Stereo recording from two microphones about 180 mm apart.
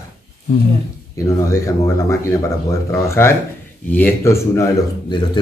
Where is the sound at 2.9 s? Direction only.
15° left (ahead or behind).